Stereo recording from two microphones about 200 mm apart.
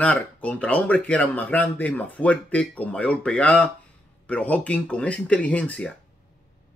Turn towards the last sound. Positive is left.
turn(degrees=5)  # may be behind; listen again after turning